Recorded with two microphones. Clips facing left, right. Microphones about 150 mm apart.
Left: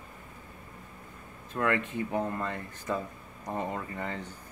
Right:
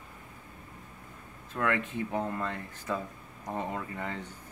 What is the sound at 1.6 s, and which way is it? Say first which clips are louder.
Speech: left 1 dB; 5° left (ahead or behind).